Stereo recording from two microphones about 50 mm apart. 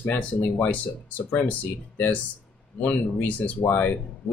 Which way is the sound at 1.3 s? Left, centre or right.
Left.